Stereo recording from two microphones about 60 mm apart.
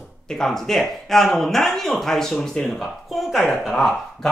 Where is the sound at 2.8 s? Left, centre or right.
Centre.